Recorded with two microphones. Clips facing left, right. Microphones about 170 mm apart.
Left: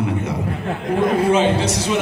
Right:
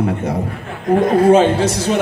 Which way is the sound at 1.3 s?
45° right (ahead or behind).